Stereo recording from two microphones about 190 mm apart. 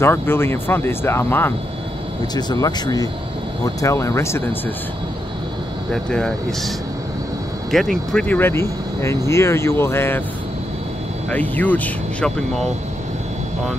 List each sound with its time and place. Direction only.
0.0 s speech: 10° left (ahead or behind)
6.0 s speech: 5° left (ahead or behind)
7.7 s speech: centre (ahead or behind)
11.2 s speech: 10° left (ahead or behind)